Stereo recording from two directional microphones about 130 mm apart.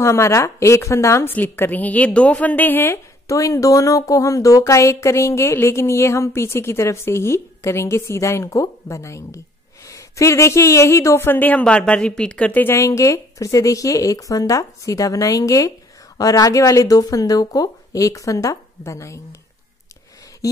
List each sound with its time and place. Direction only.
0.0 s a woman's voice: 20° left (ahead or behind)